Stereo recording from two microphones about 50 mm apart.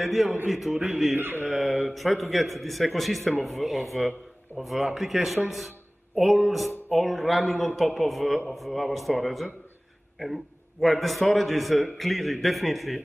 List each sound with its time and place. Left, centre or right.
0.0 s a man's voice: centre
1.1 s a sound: right
1.9 s a man's voice: centre